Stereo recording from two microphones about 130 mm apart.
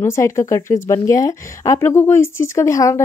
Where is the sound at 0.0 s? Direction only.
20° left (ahead or behind).